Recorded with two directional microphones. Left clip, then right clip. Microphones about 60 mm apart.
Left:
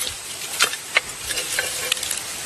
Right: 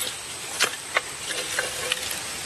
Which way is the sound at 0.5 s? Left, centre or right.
Left.